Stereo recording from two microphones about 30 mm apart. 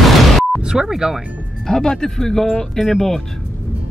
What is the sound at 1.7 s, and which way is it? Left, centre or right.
Speech, left.